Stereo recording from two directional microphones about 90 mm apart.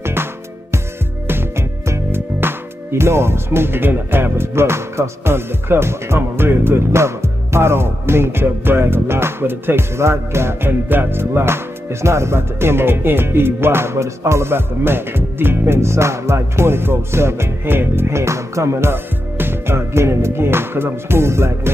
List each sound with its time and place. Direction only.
0.0 s music: 25° right (ahead or behind)